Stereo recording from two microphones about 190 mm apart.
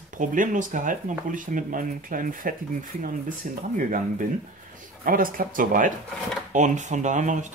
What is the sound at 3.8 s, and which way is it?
Speech, 45° right (ahead or behind).